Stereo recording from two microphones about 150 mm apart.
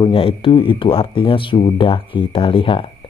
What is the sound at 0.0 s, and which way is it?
A man's voice, 35° left (ahead or behind).